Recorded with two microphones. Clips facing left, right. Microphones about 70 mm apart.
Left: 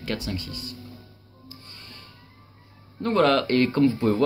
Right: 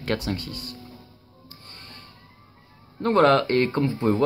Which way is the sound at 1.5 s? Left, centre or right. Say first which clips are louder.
Even; right.